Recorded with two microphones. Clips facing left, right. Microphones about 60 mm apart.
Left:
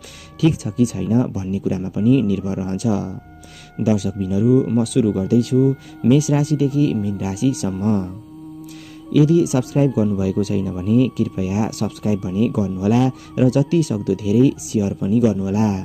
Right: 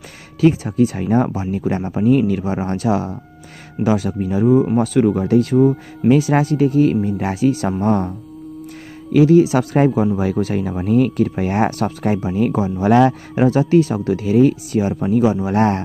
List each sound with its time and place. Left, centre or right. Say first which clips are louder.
0.4 s speech: right 3 dB; right
9.1 s speech: right 3 dB; right